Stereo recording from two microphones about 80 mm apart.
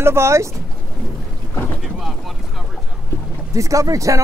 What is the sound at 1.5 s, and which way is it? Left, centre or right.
Boat, left.